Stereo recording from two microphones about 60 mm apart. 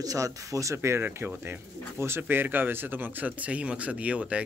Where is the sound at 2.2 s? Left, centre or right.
Right.